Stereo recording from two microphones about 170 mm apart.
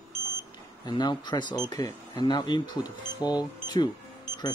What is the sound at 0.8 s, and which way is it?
Speech, 25° left (ahead or behind).